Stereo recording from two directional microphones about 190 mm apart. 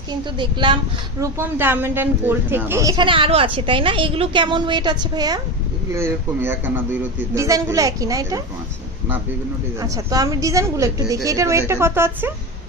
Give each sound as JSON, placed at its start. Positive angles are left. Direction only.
{"t": 0.4, "sound": "speech", "side_deg": -25}
{"t": 1.2, "sound": "a man's voice", "side_deg": -10}
{"t": 9.8, "sound": "a man's voice", "side_deg": -20}